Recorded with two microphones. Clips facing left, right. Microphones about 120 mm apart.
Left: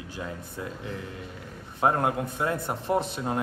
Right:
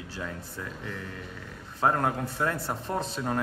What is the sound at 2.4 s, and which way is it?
Speech, 15° left (ahead or behind).